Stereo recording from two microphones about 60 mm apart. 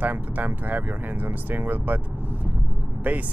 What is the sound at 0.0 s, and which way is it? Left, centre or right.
Speech, right.